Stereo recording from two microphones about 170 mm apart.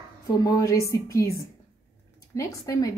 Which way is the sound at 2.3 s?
20° left (ahead or behind).